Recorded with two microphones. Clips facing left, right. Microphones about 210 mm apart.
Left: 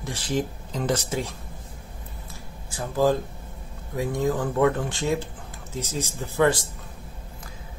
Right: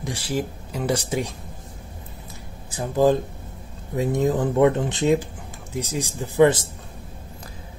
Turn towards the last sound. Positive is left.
turn(degrees=-20)  # may be behind; listen again after turning